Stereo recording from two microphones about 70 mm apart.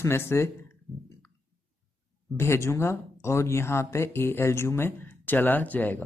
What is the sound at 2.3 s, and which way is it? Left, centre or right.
A man's voice, left.